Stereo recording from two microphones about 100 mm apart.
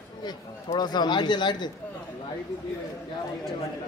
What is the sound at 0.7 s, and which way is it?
Speech, 45° left (ahead or behind).